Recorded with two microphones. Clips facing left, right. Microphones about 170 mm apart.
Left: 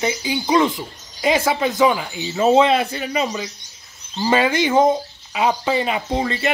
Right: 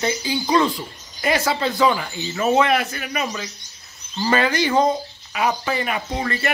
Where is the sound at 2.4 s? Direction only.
25° left (ahead or behind).